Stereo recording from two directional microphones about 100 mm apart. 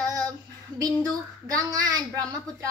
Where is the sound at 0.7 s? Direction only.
45° right (ahead or behind).